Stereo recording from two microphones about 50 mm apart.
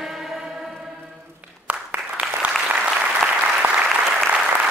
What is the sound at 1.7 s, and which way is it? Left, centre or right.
Applause, right.